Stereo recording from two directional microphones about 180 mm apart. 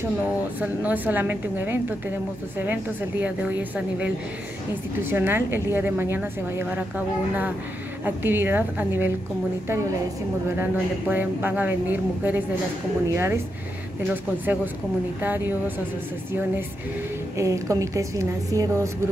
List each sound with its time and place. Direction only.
0.6 s a woman's voice: 10° right (ahead or behind)
5.1 s a woman's voice: 10° right (ahead or behind)
8.0 s a woman's voice: 10° right (ahead or behind)
10.6 s a woman's voice: 10° right (ahead or behind)
17.4 s a woman's voice: 15° right (ahead or behind)